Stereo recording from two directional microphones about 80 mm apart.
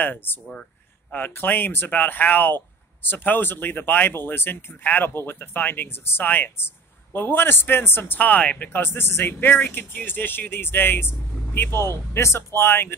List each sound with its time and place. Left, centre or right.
0.0 s speech: left